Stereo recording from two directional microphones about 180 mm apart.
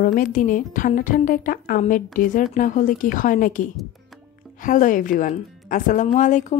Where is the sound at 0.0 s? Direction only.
50° left (ahead or behind).